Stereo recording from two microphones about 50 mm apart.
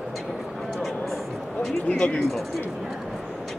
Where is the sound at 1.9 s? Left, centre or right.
Left.